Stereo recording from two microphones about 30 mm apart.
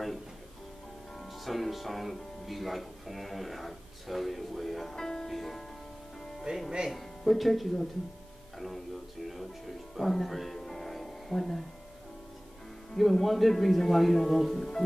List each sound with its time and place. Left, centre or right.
1.4 s speech: centre
4.9 s music: centre
5.3 s music: centre
6.5 s speech: right
6.9 s speech: centre
10.6 s music: centre
12.9 s speech: centre